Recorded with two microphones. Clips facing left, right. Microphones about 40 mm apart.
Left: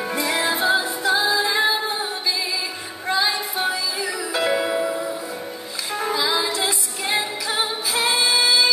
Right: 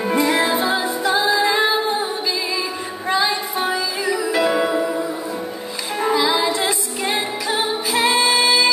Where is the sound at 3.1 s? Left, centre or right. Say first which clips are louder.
Right 2 dB; centre.